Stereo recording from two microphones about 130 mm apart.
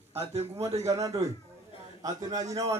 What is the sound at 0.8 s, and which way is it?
Speech, 25° right (ahead or behind).